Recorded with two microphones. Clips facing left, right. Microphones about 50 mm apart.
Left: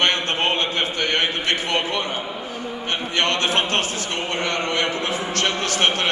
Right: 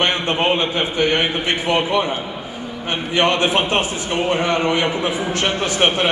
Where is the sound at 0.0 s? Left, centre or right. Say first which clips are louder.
Right 2 dB; centre.